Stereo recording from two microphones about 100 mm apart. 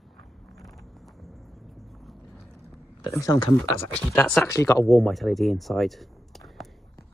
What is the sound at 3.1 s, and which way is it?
Speech, 35° left (ahead or behind).